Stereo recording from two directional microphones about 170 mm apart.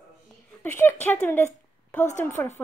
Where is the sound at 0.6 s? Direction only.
10° left (ahead or behind).